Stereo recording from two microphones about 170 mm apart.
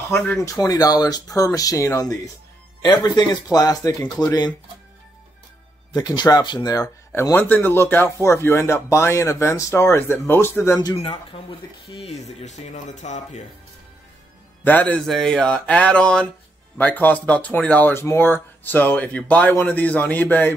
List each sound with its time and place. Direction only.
0.1 s speech: 10° left (ahead or behind)
5.9 s speech: 20° left (ahead or behind)
11.9 s speech: 35° left (ahead or behind)
14.6 s speech: 10° left (ahead or behind)